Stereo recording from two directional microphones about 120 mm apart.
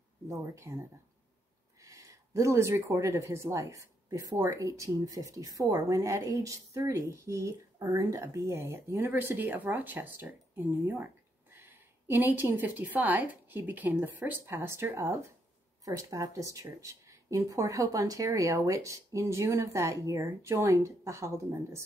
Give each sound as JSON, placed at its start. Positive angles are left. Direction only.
{"t": 0.3, "sound": "speech", "side_deg": -25}
{"t": 1.8, "sound": "speech", "side_deg": -25}
{"t": 11.5, "sound": "a sound", "side_deg": -20}
{"t": 12.3, "sound": "speech", "side_deg": -15}